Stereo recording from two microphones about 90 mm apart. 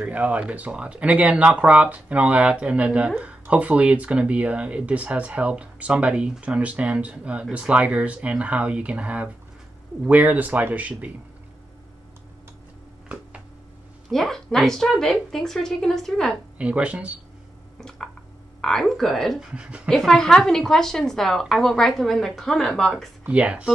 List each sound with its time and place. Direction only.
0.0 s speech: 15° right (ahead or behind)
14.1 s a woman's voice: 5° left (ahead or behind)
16.5 s speech: 15° right (ahead or behind)
17.7 s squish: 5° left (ahead or behind)
18.6 s a woman's voice: 5° left (ahead or behind)
19.4 s speech: 10° right (ahead or behind)
19.9 s a woman's voice: 5° left (ahead or behind)
23.2 s speech: 15° right (ahead or behind)